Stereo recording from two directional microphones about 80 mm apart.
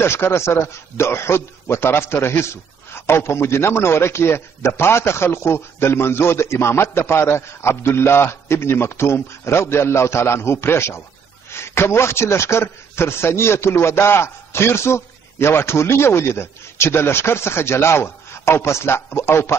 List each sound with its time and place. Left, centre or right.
0.0 s a man's voice: left